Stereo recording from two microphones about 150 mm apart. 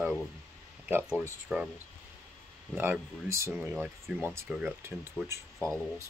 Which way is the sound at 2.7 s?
15° right (ahead or behind).